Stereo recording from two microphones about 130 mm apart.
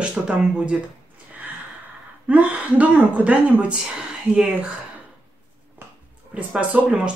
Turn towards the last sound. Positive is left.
turn(degrees=-10)  # may be behind; listen again after turning